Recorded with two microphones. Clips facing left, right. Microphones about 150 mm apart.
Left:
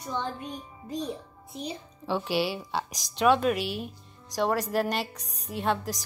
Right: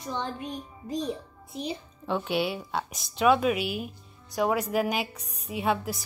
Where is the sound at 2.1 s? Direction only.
Centre (ahead or behind).